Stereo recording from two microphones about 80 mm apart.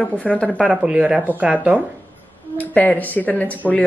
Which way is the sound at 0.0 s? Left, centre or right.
Centre.